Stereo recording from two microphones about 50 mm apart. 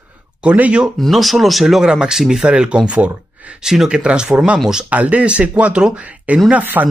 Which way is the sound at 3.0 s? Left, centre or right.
Right.